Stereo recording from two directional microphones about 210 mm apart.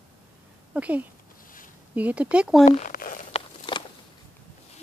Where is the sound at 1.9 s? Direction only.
5° right (ahead or behind).